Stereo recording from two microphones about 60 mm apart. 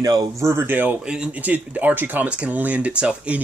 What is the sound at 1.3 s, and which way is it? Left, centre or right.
Speech, right.